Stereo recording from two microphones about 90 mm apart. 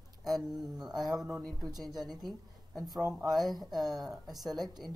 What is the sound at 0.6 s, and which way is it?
A woman's voice, 5° right (ahead or behind).